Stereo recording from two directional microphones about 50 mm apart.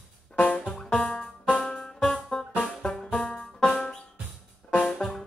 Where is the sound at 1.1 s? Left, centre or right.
Centre.